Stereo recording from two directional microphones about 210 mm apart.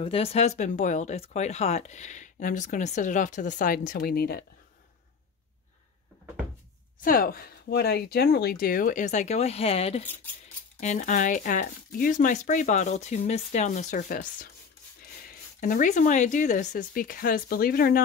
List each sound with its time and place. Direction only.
0.0 s speech: 25° left (ahead or behind); by 4.5 s 45° left (ahead or behind)
7.0 s speech: 45° left (ahead or behind)